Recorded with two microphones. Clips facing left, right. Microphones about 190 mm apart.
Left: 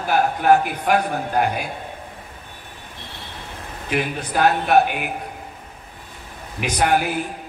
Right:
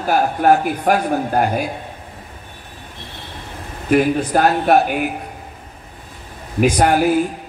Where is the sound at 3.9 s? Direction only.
45° right (ahead or behind).